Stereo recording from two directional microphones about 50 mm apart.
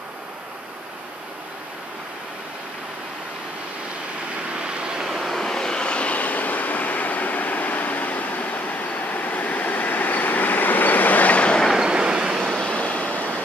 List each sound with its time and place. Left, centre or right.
4.6 s vehicle: centre
5.3 s vehicle: centre
11.7 s train: centre
12.5 s vehicle: centre